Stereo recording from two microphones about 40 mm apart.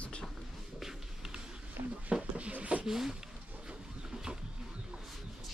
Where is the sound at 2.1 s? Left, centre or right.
Right.